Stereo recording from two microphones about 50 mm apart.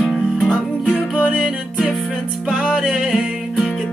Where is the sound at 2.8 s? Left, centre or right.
Centre.